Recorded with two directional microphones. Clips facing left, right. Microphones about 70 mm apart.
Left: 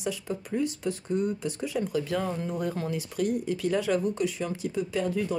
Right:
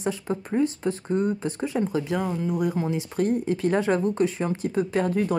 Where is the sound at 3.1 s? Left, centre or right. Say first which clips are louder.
Right 4 dB; right.